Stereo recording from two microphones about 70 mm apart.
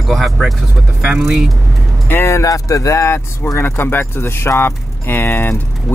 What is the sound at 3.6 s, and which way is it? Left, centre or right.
Speech, left.